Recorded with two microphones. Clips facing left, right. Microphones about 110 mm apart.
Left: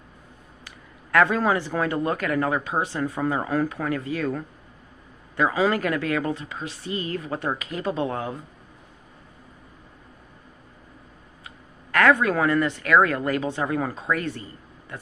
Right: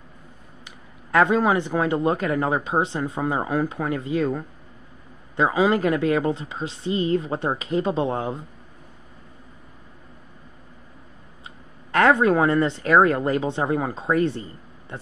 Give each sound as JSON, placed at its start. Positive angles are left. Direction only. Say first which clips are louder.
{"t": 0.7, "sound": "speech", "louder": "right 1 dB", "side_deg": -20}
{"t": 11.9, "sound": "speech", "louder": "right 2 dB", "side_deg": -25}